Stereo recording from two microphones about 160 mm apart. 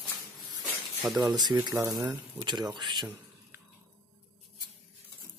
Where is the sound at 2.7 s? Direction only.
25° right (ahead or behind).